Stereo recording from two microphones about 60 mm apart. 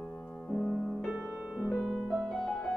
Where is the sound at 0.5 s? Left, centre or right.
Centre.